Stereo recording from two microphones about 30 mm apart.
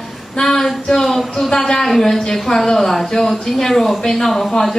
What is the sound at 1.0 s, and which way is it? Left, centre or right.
Speech, centre.